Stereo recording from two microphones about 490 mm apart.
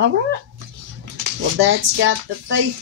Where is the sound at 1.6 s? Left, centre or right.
Right.